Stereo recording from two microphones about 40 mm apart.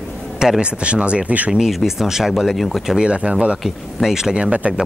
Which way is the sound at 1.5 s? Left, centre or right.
Centre.